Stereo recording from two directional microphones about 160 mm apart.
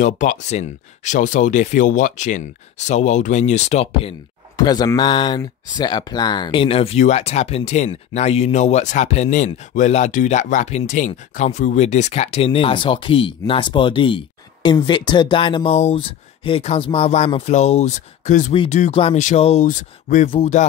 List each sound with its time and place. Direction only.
0.0 s speech: 50° left (ahead or behind)
4.6 s speech: 25° left (ahead or behind); by 18.5 s 50° left (ahead or behind)
18.5 s speech: 35° left (ahead or behind)
19.1 s speech: 45° left (ahead or behind)